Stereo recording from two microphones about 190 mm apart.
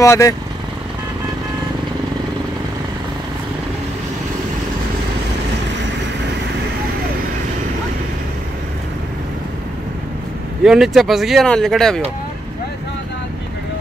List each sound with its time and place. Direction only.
0.0 s speech: 15° left (ahead or behind)
10.6 s speech: centre (ahead or behind)